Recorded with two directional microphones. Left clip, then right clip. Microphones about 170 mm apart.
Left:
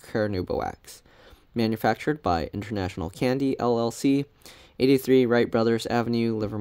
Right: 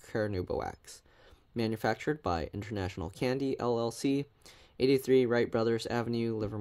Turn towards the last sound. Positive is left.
turn(degrees=25)  # may be behind; listen again after turning